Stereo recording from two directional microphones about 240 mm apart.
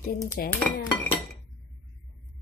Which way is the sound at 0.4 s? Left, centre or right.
Left.